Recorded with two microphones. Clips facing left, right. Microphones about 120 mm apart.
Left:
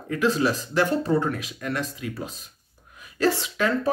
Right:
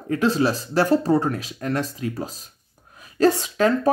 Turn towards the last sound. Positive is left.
turn(degrees=-35)  # may be behind; listen again after turning